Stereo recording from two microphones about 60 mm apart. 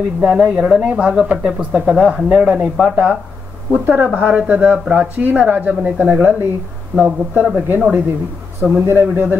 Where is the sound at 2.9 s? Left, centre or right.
Right.